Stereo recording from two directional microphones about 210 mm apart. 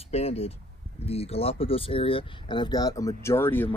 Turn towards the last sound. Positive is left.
turn(degrees=10)  # may be behind; listen again after turning